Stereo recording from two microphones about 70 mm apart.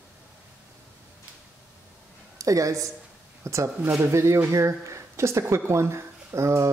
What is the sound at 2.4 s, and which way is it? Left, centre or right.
A woman's voice, right.